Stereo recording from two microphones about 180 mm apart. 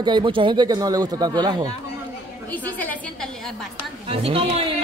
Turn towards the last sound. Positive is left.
turn(degrees=-30)  # may be behind; listen again after turning